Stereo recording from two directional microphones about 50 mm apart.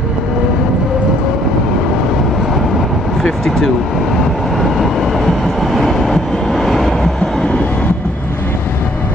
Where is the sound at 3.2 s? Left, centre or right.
Centre.